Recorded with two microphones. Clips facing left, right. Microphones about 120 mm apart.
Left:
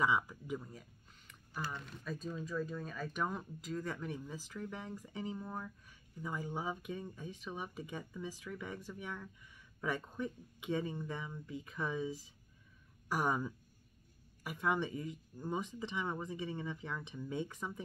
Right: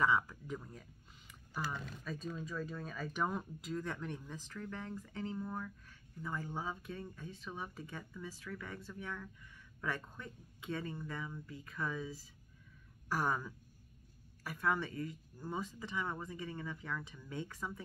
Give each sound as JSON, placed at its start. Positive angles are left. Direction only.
{"t": 0.0, "sound": "speech", "side_deg": 15}
{"t": 0.6, "sound": "speech", "side_deg": 0}